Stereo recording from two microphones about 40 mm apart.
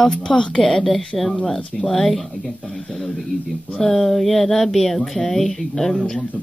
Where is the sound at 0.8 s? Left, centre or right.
Centre.